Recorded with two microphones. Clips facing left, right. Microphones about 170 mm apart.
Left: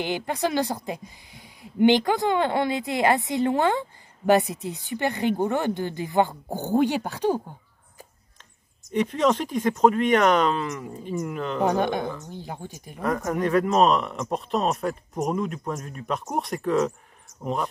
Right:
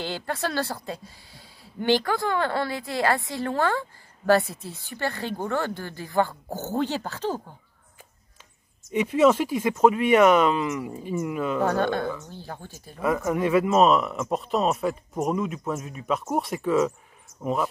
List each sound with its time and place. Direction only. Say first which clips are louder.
0.0 s speech: left 3 dB; 15° left (ahead or behind)
8.9 s speech: right 3 dB; 5° right (ahead or behind)
11.6 s speech: left 3 dB; 15° left (ahead or behind)
13.0 s speech: right 1 dB; 5° right (ahead or behind)